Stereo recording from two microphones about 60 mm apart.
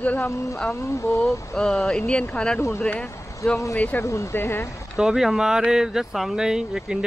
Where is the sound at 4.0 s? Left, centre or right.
Left.